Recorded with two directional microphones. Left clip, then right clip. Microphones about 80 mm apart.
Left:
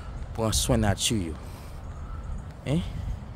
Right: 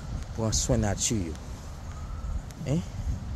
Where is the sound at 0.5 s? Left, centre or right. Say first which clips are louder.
Left 2 dB; left.